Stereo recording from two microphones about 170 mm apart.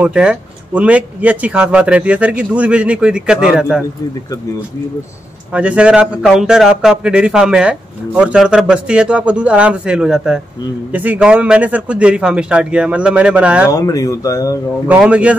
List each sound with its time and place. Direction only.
0.0 s speech: 5° right (ahead or behind)
5.5 s speech: 10° right (ahead or behind)
13.7 s speech: 20° left (ahead or behind)
14.9 s speech: 5° right (ahead or behind)